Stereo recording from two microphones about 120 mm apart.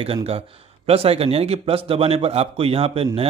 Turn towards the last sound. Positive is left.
turn(degrees=-55)  # may be behind; listen again after turning